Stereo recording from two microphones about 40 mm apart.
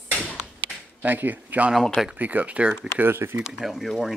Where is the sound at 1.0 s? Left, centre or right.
Right.